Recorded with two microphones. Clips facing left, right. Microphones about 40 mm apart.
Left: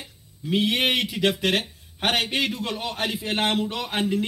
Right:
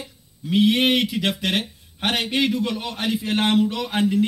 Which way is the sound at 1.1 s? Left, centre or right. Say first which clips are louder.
Left 1 dB; centre.